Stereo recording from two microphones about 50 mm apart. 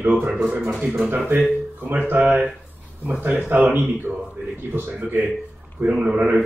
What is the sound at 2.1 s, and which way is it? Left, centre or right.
Speech, right.